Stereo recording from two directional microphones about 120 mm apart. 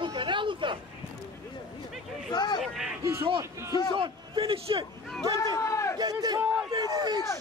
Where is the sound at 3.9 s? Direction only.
45° right (ahead or behind).